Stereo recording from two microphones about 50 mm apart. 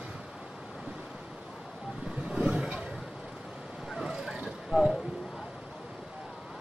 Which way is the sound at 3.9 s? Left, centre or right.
Centre.